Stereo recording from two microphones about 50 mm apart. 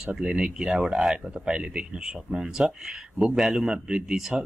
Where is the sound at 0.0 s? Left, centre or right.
Centre.